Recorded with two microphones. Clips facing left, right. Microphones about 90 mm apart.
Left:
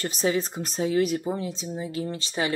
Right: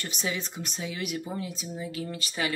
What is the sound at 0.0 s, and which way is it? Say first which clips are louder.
Speech: left 8 dB; 40° left (ahead or behind).